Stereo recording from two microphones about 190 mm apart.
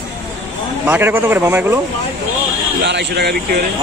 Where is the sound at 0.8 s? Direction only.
10° right (ahead or behind).